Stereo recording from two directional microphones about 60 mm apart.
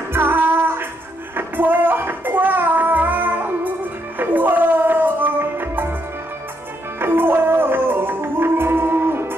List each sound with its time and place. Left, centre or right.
0.1 s music: right
7.0 s music: right